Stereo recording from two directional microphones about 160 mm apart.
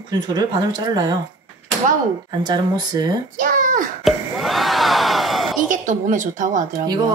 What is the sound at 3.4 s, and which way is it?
Speech, 55° right (ahead or behind).